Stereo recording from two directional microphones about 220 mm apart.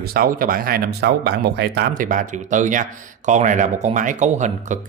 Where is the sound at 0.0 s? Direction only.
40° right (ahead or behind).